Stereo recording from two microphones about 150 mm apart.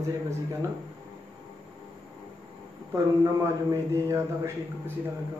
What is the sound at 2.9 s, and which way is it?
A man's voice, 20° right (ahead or behind).